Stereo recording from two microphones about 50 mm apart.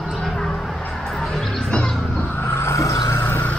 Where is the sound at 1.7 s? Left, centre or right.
Centre.